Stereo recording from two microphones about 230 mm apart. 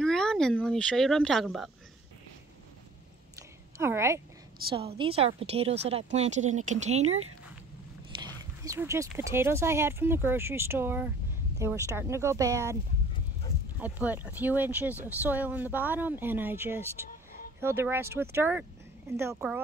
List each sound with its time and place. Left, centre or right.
0.0 s speech: centre
3.3 s a sound: centre
4.7 s a woman's voice: right
7.1 s speech: right
8.2 s speech: centre
13.7 s speech: centre